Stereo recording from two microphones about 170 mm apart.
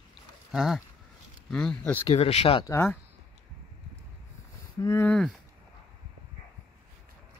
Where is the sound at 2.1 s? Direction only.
40° left (ahead or behind).